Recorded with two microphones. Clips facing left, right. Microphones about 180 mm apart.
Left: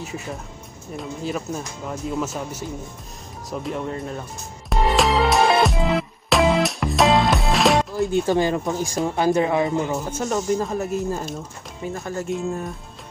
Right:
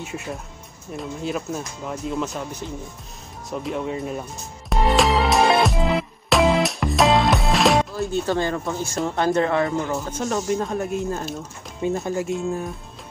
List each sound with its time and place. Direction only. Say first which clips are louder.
0.0 s speech: even; centre (ahead or behind)
4.6 s music: even; centre (ahead or behind)
7.9 s speech: left 3 dB; 15° left (ahead or behind)
11.8 s speech: right 6 dB; 25° right (ahead or behind)
12.3 s speech: right 1 dB; centre (ahead or behind)